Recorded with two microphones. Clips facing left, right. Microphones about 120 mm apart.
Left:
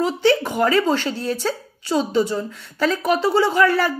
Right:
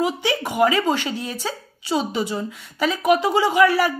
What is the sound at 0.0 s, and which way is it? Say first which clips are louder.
Speech: left 4 dB; 10° right (ahead or behind).